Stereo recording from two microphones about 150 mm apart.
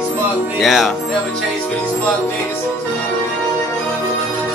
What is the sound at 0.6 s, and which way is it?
Speech, centre (ahead or behind).